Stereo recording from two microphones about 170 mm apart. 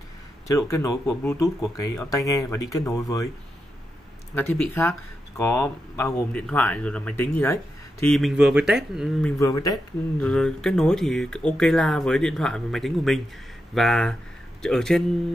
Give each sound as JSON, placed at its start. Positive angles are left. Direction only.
{"t": 0.5, "sound": "speech", "side_deg": 15}
{"t": 4.4, "sound": "speech", "side_deg": 10}
{"t": 9.4, "sound": "speech", "side_deg": 20}
{"t": 10.2, "sound": "speech", "side_deg": 5}